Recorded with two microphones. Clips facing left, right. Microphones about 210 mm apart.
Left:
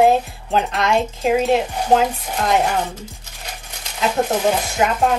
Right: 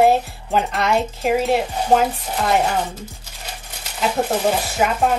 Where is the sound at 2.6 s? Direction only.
10° left (ahead or behind).